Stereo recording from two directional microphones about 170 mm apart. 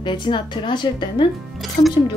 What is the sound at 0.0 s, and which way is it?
Speech, 25° left (ahead or behind).